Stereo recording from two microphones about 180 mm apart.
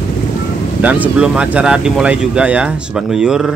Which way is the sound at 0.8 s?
10° right (ahead or behind).